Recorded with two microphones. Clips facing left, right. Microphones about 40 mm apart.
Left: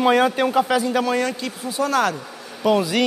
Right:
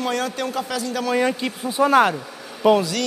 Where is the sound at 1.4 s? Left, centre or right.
Right.